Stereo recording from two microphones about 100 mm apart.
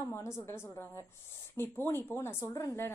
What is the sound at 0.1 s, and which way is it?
Speech, 25° left (ahead or behind).